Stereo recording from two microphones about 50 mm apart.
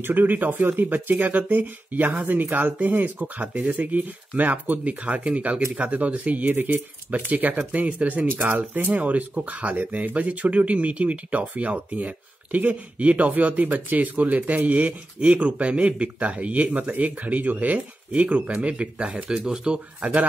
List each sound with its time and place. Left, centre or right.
0.0 s speech: right
8.3 s speech: right
9.0 s speech: right